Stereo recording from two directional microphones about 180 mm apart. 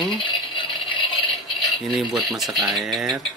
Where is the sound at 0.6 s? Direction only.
25° left (ahead or behind).